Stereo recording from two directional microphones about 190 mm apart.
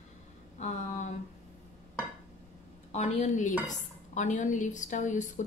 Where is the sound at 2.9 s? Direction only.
40° left (ahead or behind).